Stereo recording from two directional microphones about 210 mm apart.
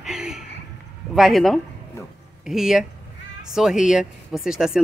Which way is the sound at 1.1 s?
Centre (ahead or behind).